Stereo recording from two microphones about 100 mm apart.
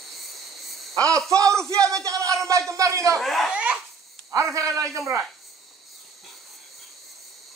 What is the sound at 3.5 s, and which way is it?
Baby laughter, 15° right (ahead or behind).